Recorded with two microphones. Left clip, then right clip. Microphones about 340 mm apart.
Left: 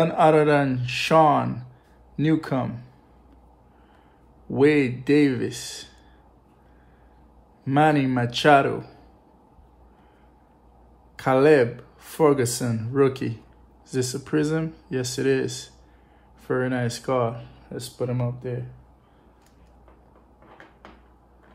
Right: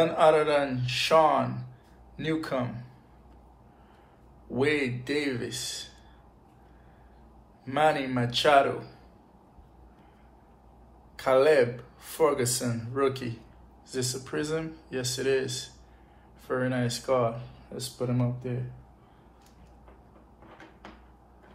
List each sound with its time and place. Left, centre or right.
0.0 s speech: left
4.6 s speech: left
7.6 s speech: left
11.1 s speech: left